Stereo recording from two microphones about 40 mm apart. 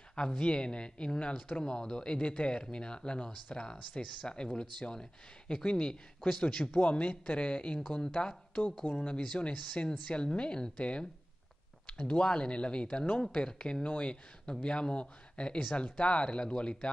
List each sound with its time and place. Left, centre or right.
0.1 s speech: left
13.8 s speech: left